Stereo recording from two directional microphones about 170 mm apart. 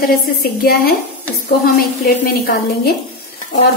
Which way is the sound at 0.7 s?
65° left (ahead or behind).